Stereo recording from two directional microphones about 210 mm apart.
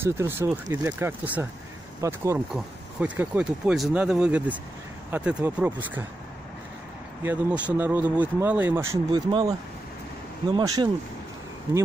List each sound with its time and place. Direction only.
0.0 s speech: 10° right (ahead or behind)
7.2 s speech: 10° right (ahead or behind)